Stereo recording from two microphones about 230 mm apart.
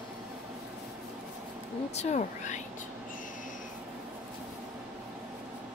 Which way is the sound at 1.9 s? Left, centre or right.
Left.